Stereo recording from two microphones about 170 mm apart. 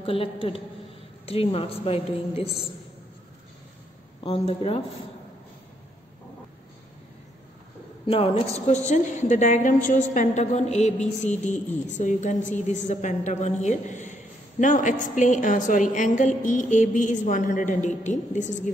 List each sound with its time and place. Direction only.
0.0 s a woman's voice: 30° left (ahead or behind)
4.2 s a woman's voice: 35° left (ahead or behind)
8.1 s a woman's voice: 35° left (ahead or behind)